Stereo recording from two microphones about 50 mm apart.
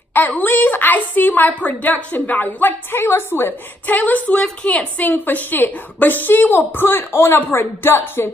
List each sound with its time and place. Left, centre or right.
0.1 s a woman's voice: left
3.9 s a woman's voice: left
5.0 s a woman's voice: left